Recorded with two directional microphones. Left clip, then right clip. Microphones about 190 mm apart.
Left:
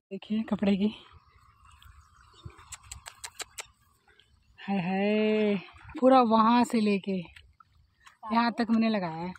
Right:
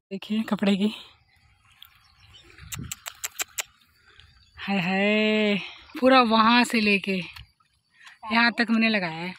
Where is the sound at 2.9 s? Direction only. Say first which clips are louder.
Right 7 dB; centre (ahead or behind).